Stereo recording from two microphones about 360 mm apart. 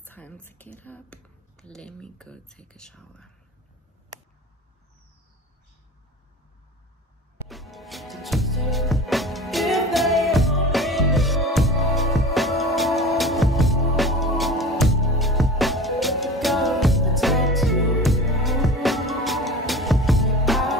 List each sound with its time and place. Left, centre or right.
0.0 s speech: centre
7.4 s music: centre